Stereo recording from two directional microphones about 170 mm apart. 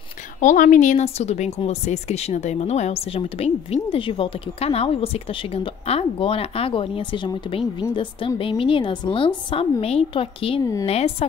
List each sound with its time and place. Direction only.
0.4 s a woman's voice: 50° left (ahead or behind)
10.6 s a woman's voice: 20° left (ahead or behind)
10.9 s a woman's voice: 35° left (ahead or behind)